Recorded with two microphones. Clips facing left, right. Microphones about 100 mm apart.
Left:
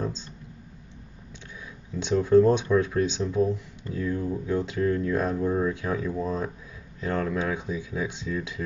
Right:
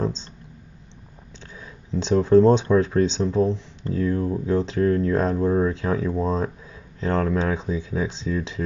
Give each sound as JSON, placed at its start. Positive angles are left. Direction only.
{"t": 0.0, "sound": "clicking", "side_deg": -30}
{"t": 2.2, "sound": "speech", "side_deg": -30}